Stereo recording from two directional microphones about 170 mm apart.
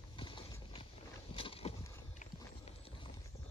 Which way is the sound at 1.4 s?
35° left (ahead or behind).